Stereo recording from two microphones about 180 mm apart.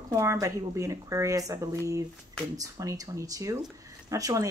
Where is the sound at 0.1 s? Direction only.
15° right (ahead or behind).